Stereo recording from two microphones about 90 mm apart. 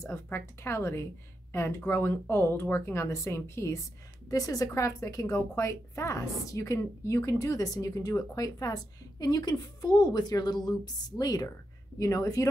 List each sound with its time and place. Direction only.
0.0 s a woman's voice: 30° left (ahead or behind)